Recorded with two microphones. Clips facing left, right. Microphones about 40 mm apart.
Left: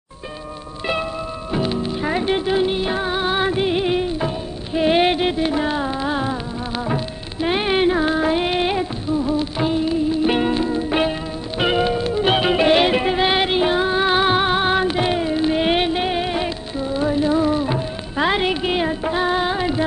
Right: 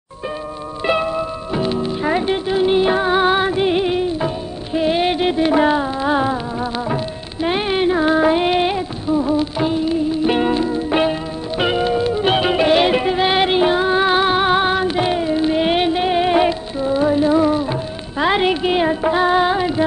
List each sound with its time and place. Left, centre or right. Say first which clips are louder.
0.8 s music: right 5 dB; centre
2.3 s music: even; centre
2.6 s music: right 5 dB; centre
3.3 s music: right 3 dB; centre
3.9 s music: right 2 dB; centre
4.8 s music: left 2 dB; centre
5.1 s music: right 3 dB; centre
5.5 s music: right 6 dB; right
5.8 s music: right 4 dB; centre
7.4 s music: even; centre
8.0 s music: right 4 dB; centre
10.2 s music: right 2 dB; centre
16.2 s music: right 7 dB; centre
17.6 s music: even; centre